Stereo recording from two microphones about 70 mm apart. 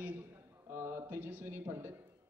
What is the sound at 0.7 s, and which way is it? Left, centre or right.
Speech, right.